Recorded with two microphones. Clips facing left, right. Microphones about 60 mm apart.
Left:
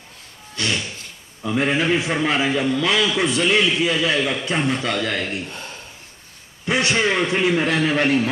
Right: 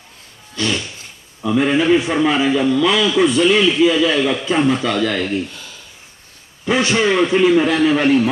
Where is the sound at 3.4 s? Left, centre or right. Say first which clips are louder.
Right 2 dB; left.